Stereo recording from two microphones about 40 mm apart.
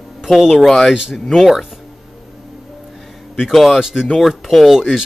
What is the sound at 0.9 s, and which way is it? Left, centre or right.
Speech, centre.